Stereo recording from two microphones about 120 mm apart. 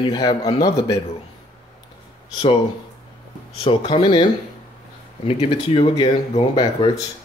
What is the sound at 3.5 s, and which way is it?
Speech, 50° left (ahead or behind).